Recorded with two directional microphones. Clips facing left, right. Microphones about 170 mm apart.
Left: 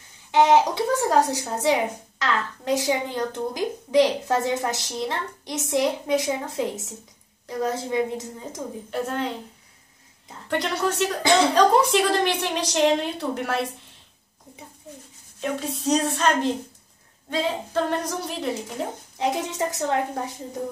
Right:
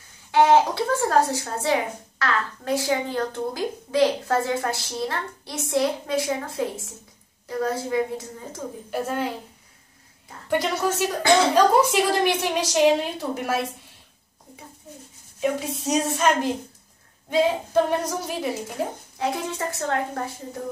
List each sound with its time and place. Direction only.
0.3 s a woman's voice: 20° left (ahead or behind)
8.9 s a woman's voice: 5° right (ahead or behind)
10.5 s a woman's voice: 10° right (ahead or behind)
15.4 s a woman's voice: 10° right (ahead or behind)
19.1 s a woman's voice: 20° left (ahead or behind)